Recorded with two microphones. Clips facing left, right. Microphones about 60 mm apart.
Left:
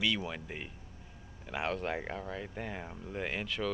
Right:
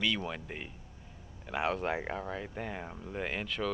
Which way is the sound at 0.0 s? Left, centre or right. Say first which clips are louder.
Even; centre.